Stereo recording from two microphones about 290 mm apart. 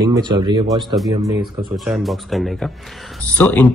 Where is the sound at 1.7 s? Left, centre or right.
Centre.